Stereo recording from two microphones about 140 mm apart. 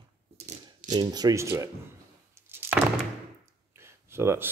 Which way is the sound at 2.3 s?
15° right (ahead or behind).